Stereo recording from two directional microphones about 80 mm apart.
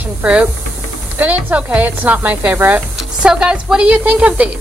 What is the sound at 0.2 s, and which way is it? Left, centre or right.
Speech, centre.